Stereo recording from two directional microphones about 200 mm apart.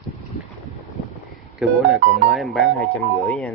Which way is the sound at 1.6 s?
Centre (ahead or behind).